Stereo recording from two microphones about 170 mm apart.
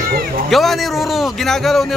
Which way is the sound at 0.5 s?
Centre (ahead or behind).